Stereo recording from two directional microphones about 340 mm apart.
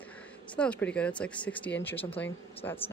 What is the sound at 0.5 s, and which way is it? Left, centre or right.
Speech, centre.